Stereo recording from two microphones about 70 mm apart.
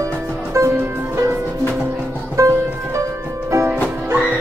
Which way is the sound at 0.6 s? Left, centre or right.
Right.